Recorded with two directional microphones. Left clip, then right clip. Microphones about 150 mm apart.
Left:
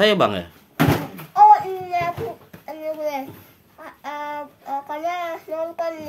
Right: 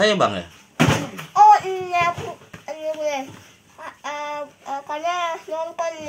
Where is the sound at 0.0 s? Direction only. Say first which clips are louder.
Left 1 dB; 25° left (ahead or behind).